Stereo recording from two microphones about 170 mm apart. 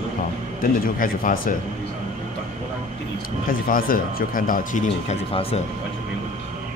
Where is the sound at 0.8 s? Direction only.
55° left (ahead or behind).